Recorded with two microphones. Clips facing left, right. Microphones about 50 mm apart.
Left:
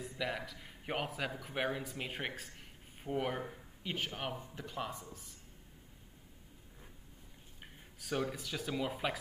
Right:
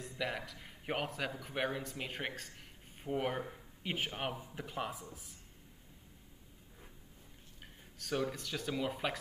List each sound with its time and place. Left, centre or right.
0.0 s a man's voice: centre
3.8 s speech: centre
7.6 s speech: centre